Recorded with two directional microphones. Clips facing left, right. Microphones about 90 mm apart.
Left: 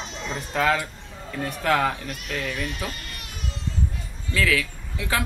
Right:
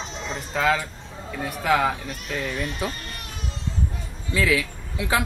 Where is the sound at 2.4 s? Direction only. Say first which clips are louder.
Right 3 dB; 25° right (ahead or behind).